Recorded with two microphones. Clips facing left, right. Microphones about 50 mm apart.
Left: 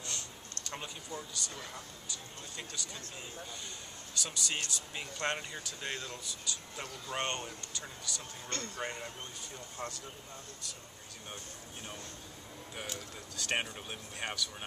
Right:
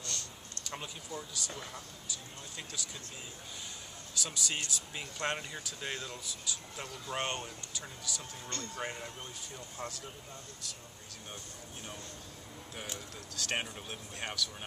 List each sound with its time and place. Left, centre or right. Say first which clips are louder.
0.0 s a sound: even; centre
0.7 s speech: even; centre
4.2 s speech: even; centre
13.4 s speech: left 1 dB; centre